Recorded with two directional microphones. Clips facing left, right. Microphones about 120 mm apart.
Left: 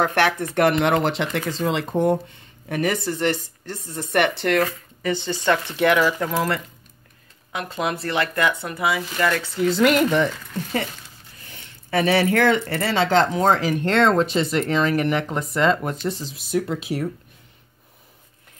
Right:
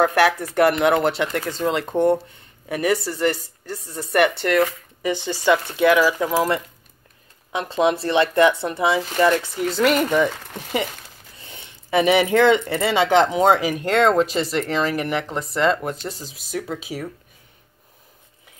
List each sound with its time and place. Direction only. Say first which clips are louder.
0.0 s speech: right 3 dB; centre (ahead or behind)
5.0 s speech: right 1 dB; 15° right (ahead or behind)
9.6 s speech: left 6 dB; centre (ahead or behind)
10.3 s speech: left 3 dB; 60° right (ahead or behind)
11.3 s speech: right 3 dB; 25° right (ahead or behind); by 17.1 s centre (ahead or behind)